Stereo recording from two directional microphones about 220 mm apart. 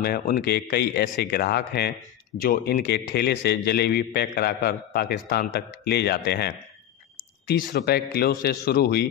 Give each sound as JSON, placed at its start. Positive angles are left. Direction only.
{"t": 0.0, "sound": "a man's voice", "side_deg": 40}